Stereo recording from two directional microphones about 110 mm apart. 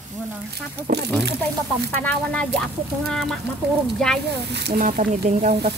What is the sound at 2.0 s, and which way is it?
Speech, 10° left (ahead or behind).